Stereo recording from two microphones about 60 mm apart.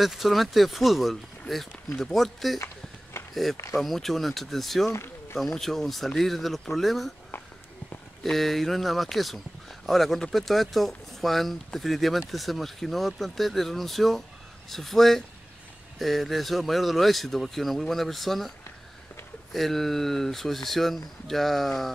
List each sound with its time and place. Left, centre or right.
0.0 s speech: centre
2.6 s a sound: left
3.8 s speech: centre
8.2 s speech: centre
19.5 s speech: centre